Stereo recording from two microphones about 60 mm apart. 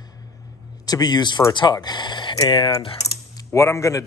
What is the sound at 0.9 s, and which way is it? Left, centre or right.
Speech, left.